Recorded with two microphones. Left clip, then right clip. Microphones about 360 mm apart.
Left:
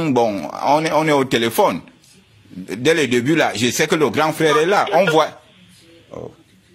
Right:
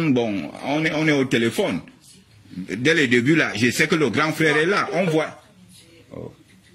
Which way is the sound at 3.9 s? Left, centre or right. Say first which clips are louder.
Left 4 dB; centre.